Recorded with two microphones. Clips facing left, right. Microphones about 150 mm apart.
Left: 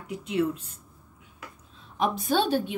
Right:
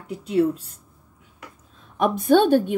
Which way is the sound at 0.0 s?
35° right (ahead or behind).